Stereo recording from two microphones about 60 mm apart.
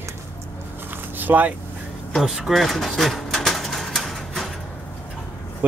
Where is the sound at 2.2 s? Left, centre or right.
Centre.